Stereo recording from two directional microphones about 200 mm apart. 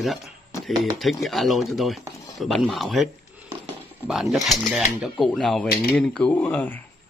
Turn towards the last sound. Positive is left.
turn(degrees=10)  # may be behind; listen again after turning